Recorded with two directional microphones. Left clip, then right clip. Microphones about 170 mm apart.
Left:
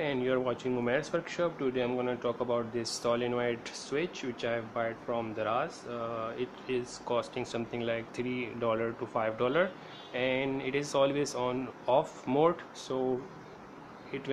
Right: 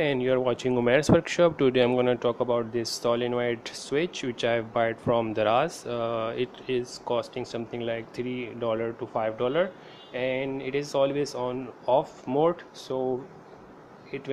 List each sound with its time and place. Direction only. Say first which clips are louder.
0.0 s speech: right 6 dB; 35° right (ahead or behind); by 13.1 s 15° right (ahead or behind)